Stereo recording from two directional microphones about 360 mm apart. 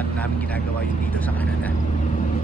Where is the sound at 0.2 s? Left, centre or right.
Centre.